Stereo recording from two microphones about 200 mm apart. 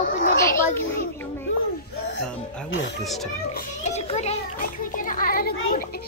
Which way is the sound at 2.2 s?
5° left (ahead or behind).